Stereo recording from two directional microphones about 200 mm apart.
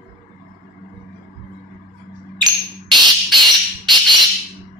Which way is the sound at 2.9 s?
20° right (ahead or behind).